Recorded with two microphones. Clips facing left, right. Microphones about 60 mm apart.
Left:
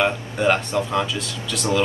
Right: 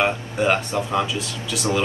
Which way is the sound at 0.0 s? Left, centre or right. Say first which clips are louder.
Left 1 dB; centre.